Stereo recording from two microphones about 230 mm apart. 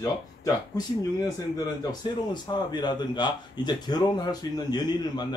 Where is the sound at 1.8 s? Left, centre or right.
Centre.